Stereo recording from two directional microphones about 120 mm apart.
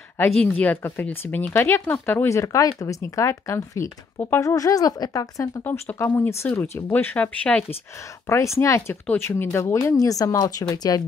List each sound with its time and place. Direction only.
0.4 s speech: 10° left (ahead or behind); by 5.6 s 30° left (ahead or behind)
5.6 s speech: 15° left (ahead or behind)
8.3 s speech: 25° left (ahead or behind)